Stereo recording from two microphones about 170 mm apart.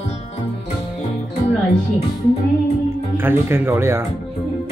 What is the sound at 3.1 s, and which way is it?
Speech, 15° right (ahead or behind).